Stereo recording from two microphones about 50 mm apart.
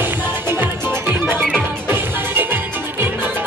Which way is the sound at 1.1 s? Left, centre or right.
Right.